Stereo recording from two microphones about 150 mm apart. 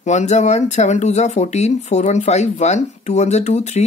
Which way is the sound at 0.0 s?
50° left (ahead or behind).